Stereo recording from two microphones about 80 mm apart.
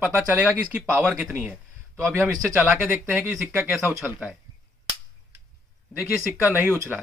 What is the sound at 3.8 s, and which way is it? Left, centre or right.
Speech, right.